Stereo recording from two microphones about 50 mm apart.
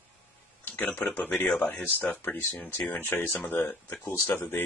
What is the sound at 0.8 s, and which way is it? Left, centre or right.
Speech, left.